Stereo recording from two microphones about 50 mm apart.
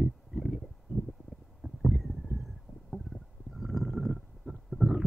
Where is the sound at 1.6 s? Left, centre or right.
Right.